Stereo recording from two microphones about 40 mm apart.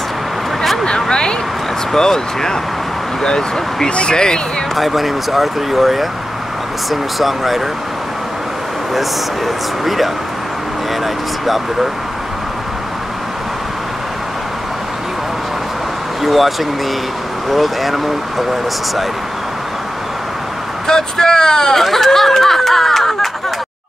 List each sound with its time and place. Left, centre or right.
0.8 s a sound: centre
1.9 s speech: centre
4.7 s speech: centre
9.8 s speech: centre
11.4 s speech: centre
16.2 s speech: centre
20.8 s speech: centre
21.8 s snicker: centre